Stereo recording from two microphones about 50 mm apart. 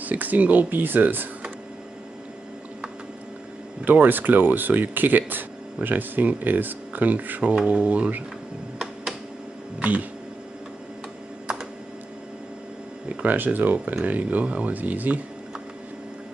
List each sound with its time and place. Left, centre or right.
0.0 s speech: right
3.8 s speech: right
9.8 s a sound: right
13.1 s speech: right